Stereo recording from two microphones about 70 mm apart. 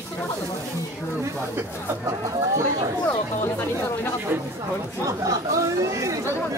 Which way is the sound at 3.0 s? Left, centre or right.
Left.